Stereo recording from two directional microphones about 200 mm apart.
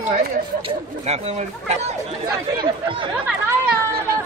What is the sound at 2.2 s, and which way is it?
Speech, 20° right (ahead or behind).